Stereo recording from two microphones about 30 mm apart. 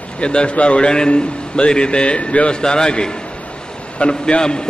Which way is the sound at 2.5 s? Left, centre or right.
Left.